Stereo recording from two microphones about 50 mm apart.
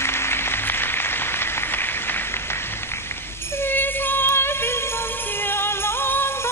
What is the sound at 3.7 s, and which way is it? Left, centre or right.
Music, left.